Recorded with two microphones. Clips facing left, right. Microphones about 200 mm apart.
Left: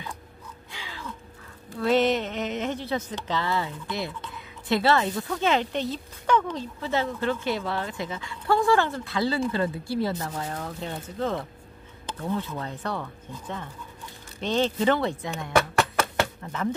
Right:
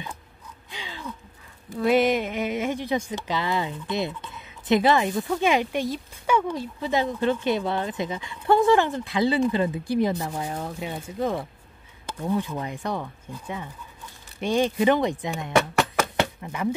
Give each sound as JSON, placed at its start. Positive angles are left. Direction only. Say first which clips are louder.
{"t": 0.7, "sound": "gasp", "louder": "right 3 dB", "side_deg": -20}
{"t": 1.8, "sound": "speech", "louder": "right 2 dB", "side_deg": -10}
{"t": 16.0, "sound": "chopping", "louder": "right 1 dB", "side_deg": -10}